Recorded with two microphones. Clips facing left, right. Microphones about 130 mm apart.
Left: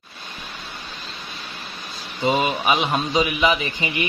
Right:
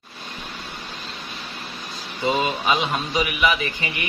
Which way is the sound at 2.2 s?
20° left (ahead or behind).